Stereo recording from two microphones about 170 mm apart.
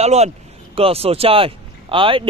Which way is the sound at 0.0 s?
40° right (ahead or behind).